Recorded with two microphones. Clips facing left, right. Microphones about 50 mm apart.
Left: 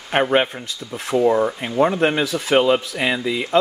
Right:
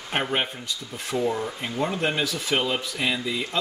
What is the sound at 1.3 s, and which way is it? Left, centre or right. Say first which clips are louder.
Speech: left 9 dB; left.